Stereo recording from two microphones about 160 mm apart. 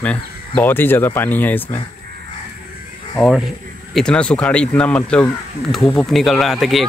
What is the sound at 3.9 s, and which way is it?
Speech, 5° left (ahead or behind).